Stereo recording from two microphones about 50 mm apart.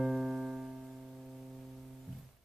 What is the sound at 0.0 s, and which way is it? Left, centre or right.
Music, centre.